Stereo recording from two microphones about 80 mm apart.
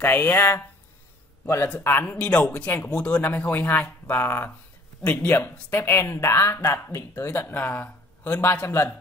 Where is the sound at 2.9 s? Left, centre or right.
Centre.